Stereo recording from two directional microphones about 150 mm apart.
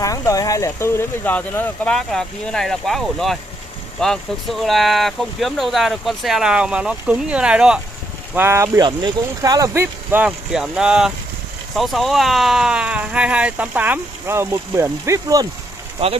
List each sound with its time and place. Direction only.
0.0 s speech: 25° left (ahead or behind); by 7.8 s 5° right (ahead or behind)
8.4 s speech: 20° right (ahead or behind)
8.8 s speech: 30° right (ahead or behind)
10.1 s speech: 5° right (ahead or behind)